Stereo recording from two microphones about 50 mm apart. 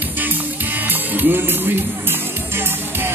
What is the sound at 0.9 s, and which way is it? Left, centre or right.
Music, right.